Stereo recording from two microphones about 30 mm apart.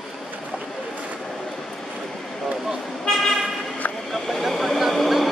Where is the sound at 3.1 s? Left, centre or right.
Centre.